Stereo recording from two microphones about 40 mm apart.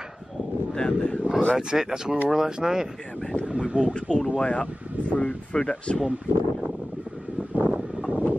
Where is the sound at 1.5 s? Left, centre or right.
Centre.